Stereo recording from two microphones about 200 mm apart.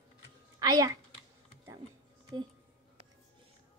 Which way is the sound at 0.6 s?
20° right (ahead or behind).